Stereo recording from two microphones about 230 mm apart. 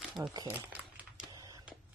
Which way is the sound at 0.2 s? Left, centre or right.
Centre.